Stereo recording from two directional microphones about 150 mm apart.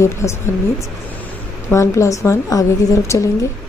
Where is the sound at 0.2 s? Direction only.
20° left (ahead or behind).